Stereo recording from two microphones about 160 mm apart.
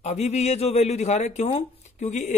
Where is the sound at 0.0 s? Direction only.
45° left (ahead or behind).